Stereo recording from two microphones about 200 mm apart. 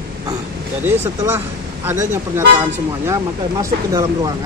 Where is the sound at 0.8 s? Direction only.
10° right (ahead or behind).